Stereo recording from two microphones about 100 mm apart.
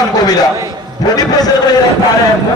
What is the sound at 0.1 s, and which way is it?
A man's voice, 40° left (ahead or behind).